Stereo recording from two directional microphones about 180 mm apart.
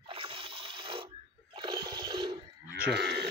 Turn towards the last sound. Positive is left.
turn(degrees=-65)  # may be behind; listen again after turning